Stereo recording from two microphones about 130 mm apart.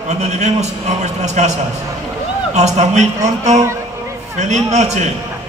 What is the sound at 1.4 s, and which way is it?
Speech, 65° right (ahead or behind).